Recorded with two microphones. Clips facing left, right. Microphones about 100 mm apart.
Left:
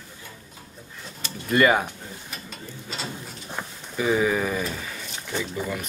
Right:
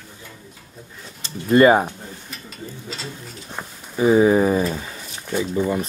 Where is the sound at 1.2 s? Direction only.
30° right (ahead or behind).